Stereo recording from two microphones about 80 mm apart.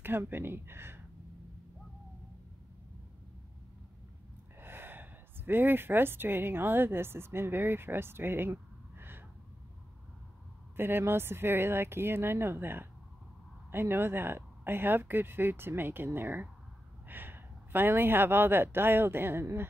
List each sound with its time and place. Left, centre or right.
0.0 s speech: right
4.6 s speech: right
10.8 s speech: right